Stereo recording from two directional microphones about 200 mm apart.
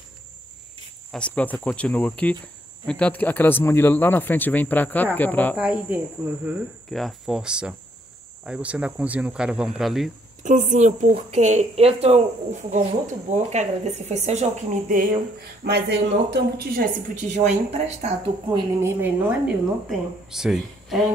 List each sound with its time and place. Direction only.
1.1 s speech: 5° left (ahead or behind)
5.6 s speech: 5° right (ahead or behind)
10.4 s speech: 40° right (ahead or behind)
15.6 s speech: 55° right (ahead or behind)
17.4 s speech: 35° right (ahead or behind)
18.8 s speech: 10° right (ahead or behind)